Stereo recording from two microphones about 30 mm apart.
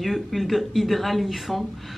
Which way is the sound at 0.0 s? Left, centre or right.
Centre.